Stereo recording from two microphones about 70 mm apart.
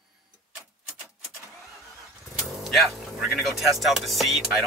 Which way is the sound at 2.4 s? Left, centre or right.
Centre.